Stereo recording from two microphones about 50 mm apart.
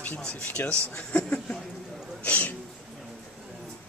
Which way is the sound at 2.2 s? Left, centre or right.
Left.